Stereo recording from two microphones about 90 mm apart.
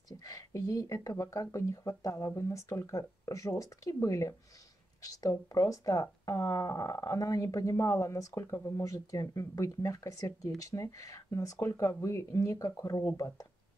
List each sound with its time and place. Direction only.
0.2 s speech: 40° left (ahead or behind)